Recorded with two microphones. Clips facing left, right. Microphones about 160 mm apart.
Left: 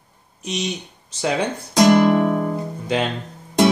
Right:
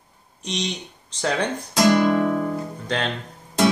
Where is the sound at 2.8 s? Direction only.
10° left (ahead or behind).